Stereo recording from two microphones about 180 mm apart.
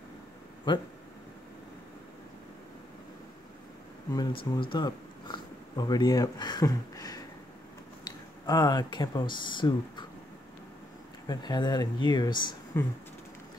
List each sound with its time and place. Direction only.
0.7 s speech: 25° left (ahead or behind)
4.1 s speech: 20° left (ahead or behind)
4.6 s a sound: 25° left (ahead or behind)
8.0 s speech: 20° left (ahead or behind)
11.2 s speech: 25° left (ahead or behind)
12.7 s speech: 10° left (ahead or behind)